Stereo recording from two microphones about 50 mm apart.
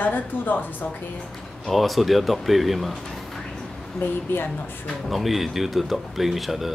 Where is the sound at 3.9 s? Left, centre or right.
Left.